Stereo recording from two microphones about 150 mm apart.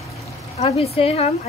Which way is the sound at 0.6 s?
40° left (ahead or behind).